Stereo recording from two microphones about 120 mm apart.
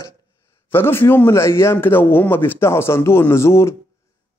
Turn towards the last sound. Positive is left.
turn(degrees=20)  # may be behind; listen again after turning